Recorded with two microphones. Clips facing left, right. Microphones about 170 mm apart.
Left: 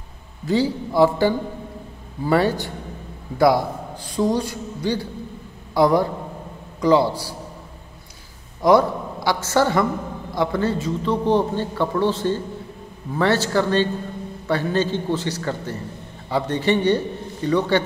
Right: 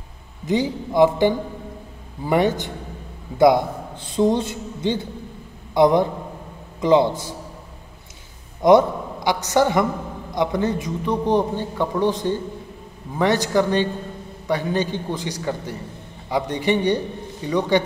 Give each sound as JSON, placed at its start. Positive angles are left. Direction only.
{"t": 0.5, "sound": "a man's voice", "side_deg": -20}
{"t": 8.6, "sound": "a man's voice", "side_deg": -20}